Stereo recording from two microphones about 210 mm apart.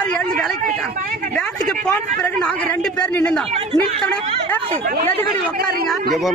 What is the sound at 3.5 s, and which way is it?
Speech, 30° right (ahead or behind).